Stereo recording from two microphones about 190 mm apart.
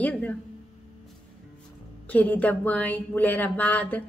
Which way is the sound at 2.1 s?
10° left (ahead or behind).